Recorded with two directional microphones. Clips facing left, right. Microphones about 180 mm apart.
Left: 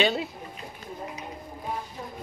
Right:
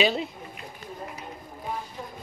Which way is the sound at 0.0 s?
Centre (ahead or behind).